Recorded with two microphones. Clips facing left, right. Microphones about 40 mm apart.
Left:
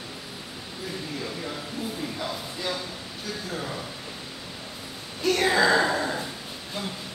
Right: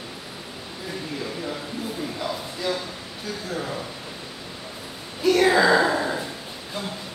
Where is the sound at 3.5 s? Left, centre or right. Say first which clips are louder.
Right 4 dB; centre.